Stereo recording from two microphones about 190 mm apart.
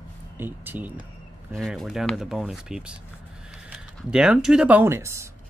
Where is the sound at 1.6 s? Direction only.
Centre (ahead or behind); by 5.3 s 15° right (ahead or behind).